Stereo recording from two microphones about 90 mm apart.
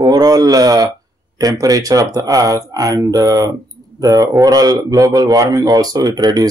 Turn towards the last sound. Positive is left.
turn(degrees=-45)  # may be behind; listen again after turning